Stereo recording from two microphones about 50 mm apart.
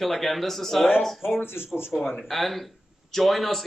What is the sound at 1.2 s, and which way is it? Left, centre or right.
Speech, left.